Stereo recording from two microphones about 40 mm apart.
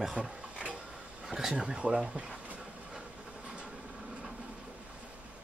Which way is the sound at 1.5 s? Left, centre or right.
Right.